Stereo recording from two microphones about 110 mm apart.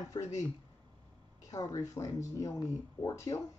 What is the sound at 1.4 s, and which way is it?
Speech, 30° left (ahead or behind).